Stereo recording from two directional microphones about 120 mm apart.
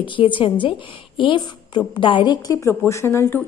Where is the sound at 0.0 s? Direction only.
45° left (ahead or behind).